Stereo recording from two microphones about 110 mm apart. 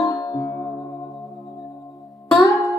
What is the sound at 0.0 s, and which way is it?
Music, 35° left (ahead or behind).